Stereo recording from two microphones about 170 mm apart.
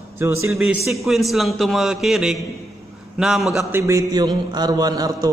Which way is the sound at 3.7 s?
15° right (ahead or behind).